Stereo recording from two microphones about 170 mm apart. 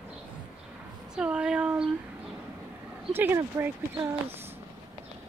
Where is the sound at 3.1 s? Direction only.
15° right (ahead or behind).